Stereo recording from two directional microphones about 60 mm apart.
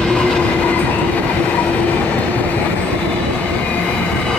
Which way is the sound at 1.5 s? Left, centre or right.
Left.